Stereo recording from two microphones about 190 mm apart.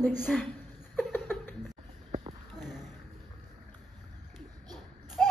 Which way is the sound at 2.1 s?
30° right (ahead or behind).